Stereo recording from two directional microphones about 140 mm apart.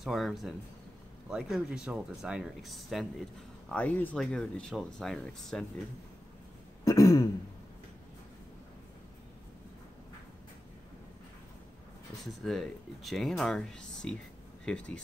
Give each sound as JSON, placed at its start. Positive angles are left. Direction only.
{"t": 0.0, "sound": "speech", "side_deg": 0}
{"t": 6.8, "sound": "throat clearing", "side_deg": 25}
{"t": 12.3, "sound": "speech", "side_deg": 0}